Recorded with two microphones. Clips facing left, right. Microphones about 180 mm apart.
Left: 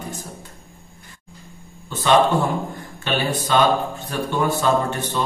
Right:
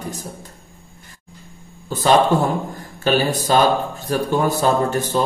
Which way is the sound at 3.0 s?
40° right (ahead or behind).